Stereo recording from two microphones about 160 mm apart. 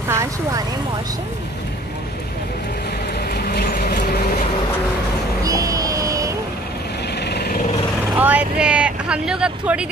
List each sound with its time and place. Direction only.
0.1 s vehicle: 20° right (ahead or behind)
3.3 s vehicle: 75° left (ahead or behind)
5.4 s music: 20° right (ahead or behind)
7.2 s lawn mower: 90° left
8.2 s vehicle: 10° right (ahead or behind)